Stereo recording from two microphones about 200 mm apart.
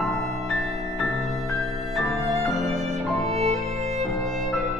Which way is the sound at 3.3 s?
30° right (ahead or behind).